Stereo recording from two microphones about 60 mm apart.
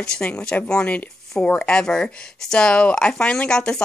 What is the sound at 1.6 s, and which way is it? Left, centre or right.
Speech, centre.